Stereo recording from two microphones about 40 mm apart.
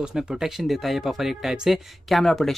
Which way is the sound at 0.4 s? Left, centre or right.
Centre.